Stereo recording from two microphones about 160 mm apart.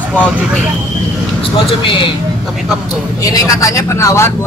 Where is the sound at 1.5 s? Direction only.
30° left (ahead or behind).